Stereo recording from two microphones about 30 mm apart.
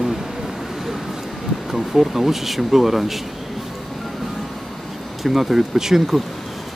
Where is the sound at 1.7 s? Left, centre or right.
Centre.